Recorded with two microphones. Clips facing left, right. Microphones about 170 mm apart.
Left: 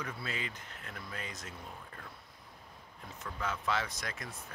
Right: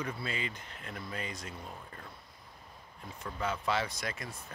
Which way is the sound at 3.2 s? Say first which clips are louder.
Right 2 dB; 15° right (ahead or behind).